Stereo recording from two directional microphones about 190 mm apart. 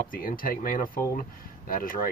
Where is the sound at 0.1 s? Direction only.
50° left (ahead or behind).